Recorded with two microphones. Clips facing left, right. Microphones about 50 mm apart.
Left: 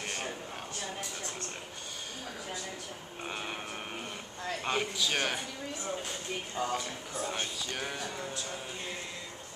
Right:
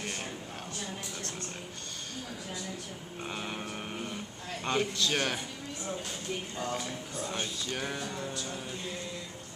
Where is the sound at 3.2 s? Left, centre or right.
Centre.